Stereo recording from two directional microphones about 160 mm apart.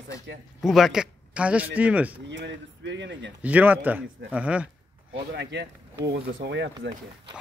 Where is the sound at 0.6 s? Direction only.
Centre (ahead or behind).